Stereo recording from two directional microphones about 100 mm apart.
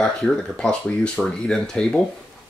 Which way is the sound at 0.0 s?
5° left (ahead or behind).